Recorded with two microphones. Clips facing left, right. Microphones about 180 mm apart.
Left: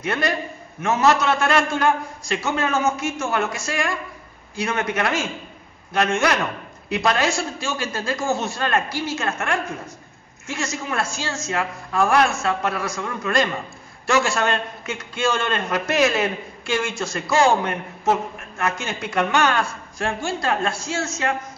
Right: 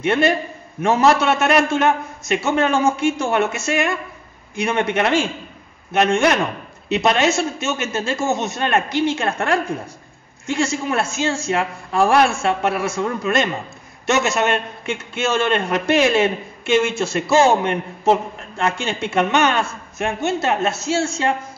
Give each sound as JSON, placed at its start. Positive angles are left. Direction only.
{"t": 0.0, "sound": "a man's voice", "side_deg": -25}